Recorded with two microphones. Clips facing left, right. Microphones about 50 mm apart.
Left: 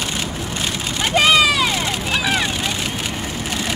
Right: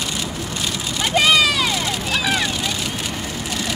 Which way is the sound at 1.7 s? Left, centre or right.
Left.